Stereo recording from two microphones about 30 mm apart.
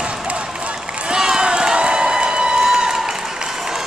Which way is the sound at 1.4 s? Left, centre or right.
Right.